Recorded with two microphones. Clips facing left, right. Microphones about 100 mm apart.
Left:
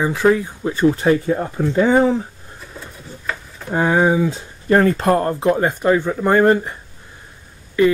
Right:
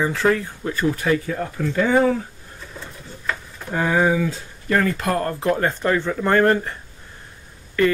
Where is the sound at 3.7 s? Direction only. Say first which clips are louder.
Left 3 dB; 25° left (ahead or behind).